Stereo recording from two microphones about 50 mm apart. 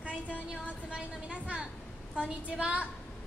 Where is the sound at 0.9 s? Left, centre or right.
Right.